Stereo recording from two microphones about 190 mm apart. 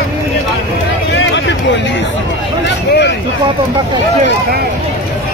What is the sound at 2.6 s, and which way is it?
Vehicle, 70° left (ahead or behind).